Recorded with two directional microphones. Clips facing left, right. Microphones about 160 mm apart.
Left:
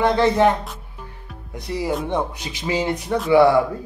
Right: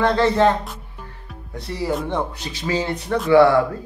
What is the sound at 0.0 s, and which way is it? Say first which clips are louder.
Speech: even; 15° left (ahead or behind).